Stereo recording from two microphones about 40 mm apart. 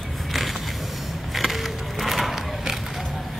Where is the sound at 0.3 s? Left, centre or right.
Centre.